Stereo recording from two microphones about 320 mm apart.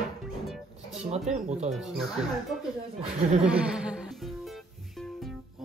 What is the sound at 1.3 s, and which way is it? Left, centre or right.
Speech, right.